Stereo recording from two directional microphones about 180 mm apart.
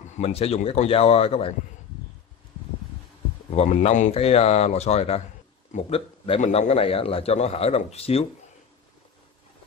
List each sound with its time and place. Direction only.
0.1 s a man's voice: 35° left (ahead or behind)
3.5 s a man's voice: 35° left (ahead or behind)